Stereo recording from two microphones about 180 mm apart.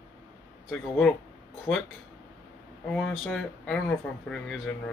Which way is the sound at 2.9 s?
5° left (ahead or behind).